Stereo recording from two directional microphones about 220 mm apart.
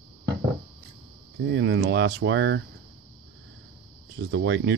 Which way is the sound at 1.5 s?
55° right (ahead or behind).